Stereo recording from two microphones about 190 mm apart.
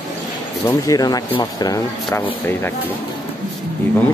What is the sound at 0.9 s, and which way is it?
Speech, 20° left (ahead or behind).